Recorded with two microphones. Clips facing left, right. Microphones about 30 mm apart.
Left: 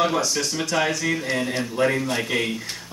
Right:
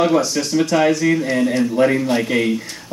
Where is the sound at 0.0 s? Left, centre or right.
Centre.